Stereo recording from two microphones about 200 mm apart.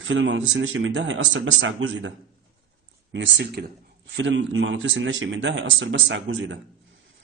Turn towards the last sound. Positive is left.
turn(degrees=-65)  # may be behind; listen again after turning